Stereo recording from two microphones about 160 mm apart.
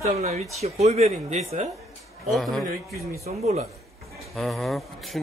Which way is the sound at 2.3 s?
Centre (ahead or behind).